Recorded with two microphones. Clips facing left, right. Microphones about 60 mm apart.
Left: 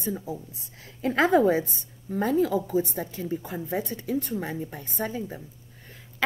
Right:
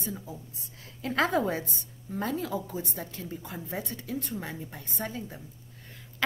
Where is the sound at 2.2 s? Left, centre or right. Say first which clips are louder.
Left 8 dB; left.